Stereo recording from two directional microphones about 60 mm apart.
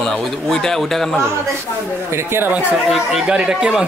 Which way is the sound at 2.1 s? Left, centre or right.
Right.